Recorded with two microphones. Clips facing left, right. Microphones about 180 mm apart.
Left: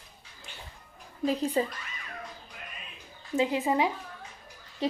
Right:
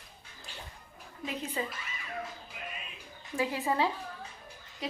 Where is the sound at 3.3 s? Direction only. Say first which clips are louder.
Left 5 dB; 20° left (ahead or behind).